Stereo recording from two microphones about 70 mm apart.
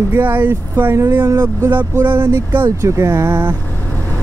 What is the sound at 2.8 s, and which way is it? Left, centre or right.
Speech, right.